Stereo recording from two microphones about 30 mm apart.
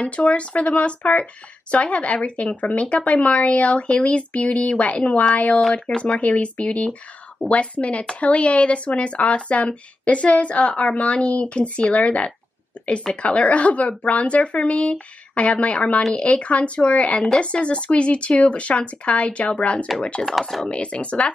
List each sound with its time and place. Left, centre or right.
0.0 s speech: left
5.6 s speech: centre
6.1 s speech: left
20.0 s speech: left
20.2 s speech: centre
20.6 s speech: left